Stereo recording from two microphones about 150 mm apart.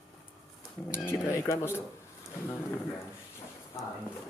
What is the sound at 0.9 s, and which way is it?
Speech, 15° left (ahead or behind).